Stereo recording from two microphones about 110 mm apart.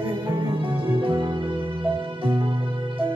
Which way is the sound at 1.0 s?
50° right (ahead or behind).